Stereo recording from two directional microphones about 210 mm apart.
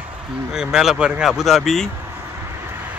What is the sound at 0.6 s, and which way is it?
Speech, centre (ahead or behind).